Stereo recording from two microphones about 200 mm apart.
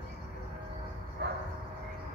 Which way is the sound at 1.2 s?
60° right (ahead or behind).